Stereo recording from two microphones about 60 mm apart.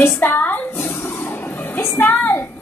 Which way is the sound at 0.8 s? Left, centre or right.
Left.